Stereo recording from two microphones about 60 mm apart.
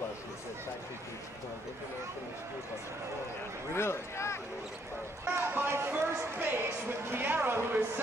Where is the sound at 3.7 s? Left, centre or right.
Left.